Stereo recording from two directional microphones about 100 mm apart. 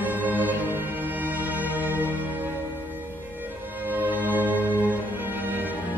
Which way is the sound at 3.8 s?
15° right (ahead or behind).